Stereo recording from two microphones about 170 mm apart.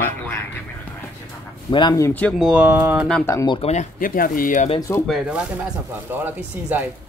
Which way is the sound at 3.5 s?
35° left (ahead or behind).